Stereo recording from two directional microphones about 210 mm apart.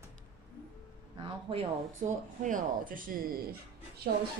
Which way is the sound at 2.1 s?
40° right (ahead or behind).